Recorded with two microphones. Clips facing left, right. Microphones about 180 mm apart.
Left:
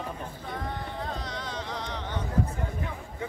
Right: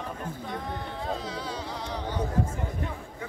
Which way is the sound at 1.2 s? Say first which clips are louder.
Right 1 dB; 10° right (ahead or behind).